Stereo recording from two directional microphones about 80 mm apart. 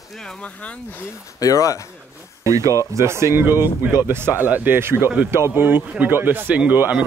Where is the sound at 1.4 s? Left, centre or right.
Left.